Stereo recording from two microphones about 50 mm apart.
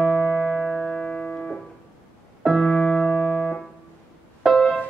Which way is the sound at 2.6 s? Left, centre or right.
Centre.